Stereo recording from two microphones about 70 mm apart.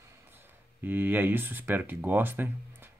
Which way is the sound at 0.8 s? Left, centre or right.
Right.